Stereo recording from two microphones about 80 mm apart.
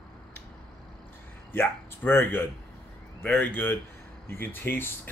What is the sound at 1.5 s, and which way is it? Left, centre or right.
Speech, left.